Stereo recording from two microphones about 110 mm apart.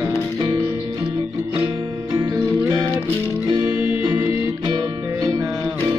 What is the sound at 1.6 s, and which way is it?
Music, 40° right (ahead or behind).